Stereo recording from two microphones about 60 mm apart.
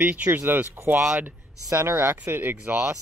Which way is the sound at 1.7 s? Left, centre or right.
Right.